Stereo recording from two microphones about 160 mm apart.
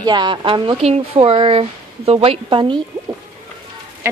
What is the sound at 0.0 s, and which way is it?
Speech, 25° right (ahead or behind).